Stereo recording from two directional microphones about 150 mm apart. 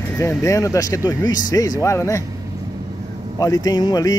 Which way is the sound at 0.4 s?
20° left (ahead or behind).